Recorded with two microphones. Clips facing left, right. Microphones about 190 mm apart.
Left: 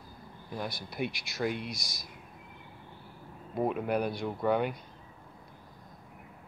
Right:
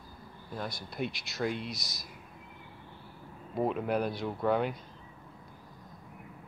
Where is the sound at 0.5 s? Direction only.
Centre (ahead or behind).